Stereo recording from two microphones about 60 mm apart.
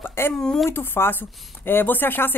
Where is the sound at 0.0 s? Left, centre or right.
Left.